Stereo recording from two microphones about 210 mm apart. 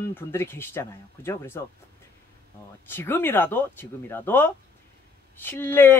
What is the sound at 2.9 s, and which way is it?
Speech, 10° left (ahead or behind).